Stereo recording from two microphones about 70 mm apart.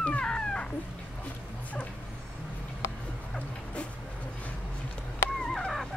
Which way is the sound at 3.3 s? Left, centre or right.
Centre.